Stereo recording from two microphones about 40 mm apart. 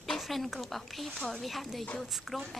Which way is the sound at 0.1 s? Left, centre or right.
Centre.